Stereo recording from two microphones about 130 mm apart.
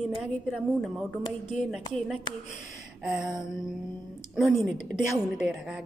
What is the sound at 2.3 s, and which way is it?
Speech, 35° left (ahead or behind).